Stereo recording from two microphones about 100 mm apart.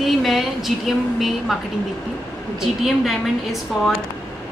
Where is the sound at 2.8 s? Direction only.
Centre (ahead or behind).